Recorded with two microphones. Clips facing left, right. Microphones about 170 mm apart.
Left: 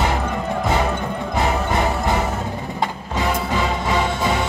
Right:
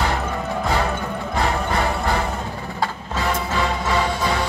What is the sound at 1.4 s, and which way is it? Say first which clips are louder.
Music: left 2 dB; 20° left (ahead or behind).